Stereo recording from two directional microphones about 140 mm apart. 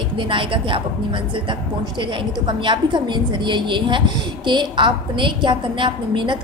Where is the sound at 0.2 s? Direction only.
35° right (ahead or behind).